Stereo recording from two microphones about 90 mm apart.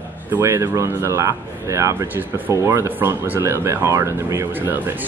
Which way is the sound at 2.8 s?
20° right (ahead or behind).